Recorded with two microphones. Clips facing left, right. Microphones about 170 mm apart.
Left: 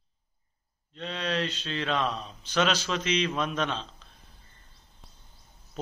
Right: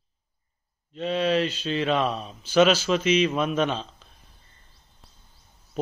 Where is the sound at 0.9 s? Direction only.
10° right (ahead or behind).